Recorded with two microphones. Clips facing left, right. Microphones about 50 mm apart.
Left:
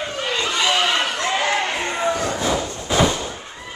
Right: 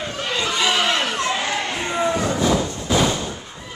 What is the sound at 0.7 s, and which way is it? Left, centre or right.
Chatter, centre.